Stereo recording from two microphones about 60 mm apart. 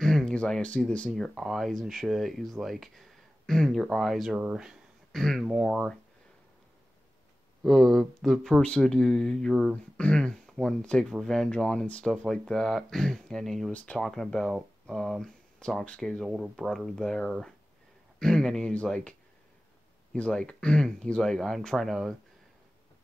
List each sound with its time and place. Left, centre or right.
0.0 s speech: centre
7.6 s speech: centre
10.8 s speech: centre
11.1 s speech: centre
15.8 s speech: centre
16.3 s speech: centre
20.2 s speech: left; by 22.1 s centre